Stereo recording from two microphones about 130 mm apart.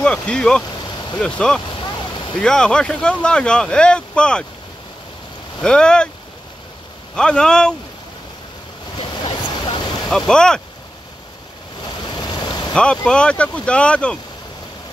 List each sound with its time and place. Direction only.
0.0 s speech: 10° left (ahead or behind)
1.8 s vehicle: 40° left (ahead or behind)
2.3 s speech: 5° left (ahead or behind)
5.6 s speech: 5° left (ahead or behind)
7.2 s speech: 5° left (ahead or behind)
8.9 s waves: 35° left (ahead or behind)
10.0 s speech: 5° left (ahead or behind)
12.1 s boat: 35° left (ahead or behind)
12.7 s speech: 5° left (ahead or behind)